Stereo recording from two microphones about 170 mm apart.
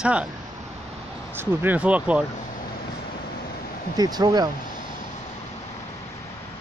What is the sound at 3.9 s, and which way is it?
Speech, 25° right (ahead or behind).